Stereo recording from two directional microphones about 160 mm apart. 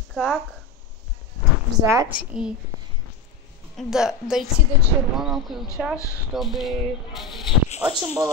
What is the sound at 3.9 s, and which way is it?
Speech, 5° right (ahead or behind).